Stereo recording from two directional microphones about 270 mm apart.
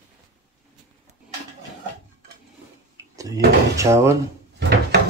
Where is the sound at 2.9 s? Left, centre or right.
Centre.